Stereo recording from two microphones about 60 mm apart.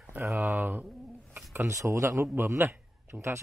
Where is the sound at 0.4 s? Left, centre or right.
Right.